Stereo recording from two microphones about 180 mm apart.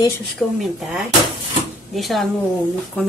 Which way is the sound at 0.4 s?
5° left (ahead or behind).